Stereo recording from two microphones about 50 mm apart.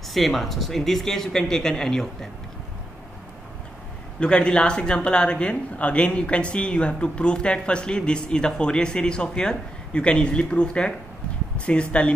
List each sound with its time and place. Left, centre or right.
0.1 s speech: centre
4.2 s speech: left